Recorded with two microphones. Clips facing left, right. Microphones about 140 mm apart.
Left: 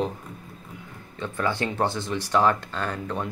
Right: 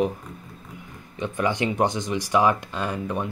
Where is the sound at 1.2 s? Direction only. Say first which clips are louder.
Right 2 dB; 15° right (ahead or behind).